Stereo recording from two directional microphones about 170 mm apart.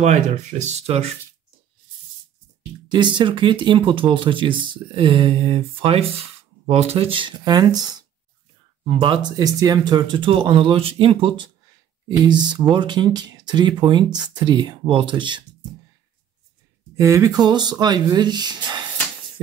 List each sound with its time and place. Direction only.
0.0 s speech: 45° right (ahead or behind)
2.9 s speech: 30° right (ahead or behind)
8.8 s speech: 30° right (ahead or behind)
16.9 s speech: 15° right (ahead or behind)